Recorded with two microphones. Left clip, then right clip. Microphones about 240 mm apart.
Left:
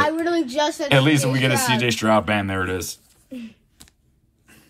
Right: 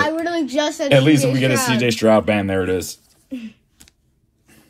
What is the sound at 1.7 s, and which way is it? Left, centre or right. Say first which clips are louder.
Speech: right 4 dB; centre.